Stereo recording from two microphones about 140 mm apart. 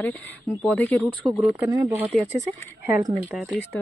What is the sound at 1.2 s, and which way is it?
Speech, 10° right (ahead or behind).